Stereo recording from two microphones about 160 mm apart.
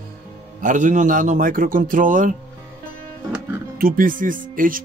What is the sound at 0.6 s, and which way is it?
Speech, 50° right (ahead or behind).